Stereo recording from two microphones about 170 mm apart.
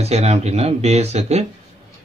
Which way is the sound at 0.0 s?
40° right (ahead or behind).